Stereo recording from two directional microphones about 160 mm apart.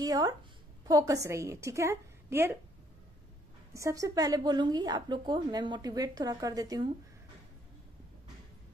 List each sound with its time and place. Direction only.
0.0 s a woman's voice: 25° right (ahead or behind)
3.7 s a woman's voice: 20° right (ahead or behind)